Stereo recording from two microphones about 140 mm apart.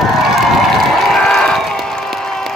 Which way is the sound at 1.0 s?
Centre (ahead or behind).